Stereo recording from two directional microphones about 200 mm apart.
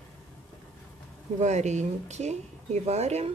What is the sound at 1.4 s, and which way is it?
Speech, 35° right (ahead or behind).